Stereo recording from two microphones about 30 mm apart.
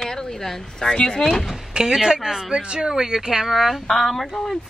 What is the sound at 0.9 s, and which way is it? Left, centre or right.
Speech, left.